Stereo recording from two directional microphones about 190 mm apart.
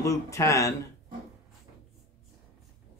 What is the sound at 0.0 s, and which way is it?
Speech, 15° left (ahead or behind).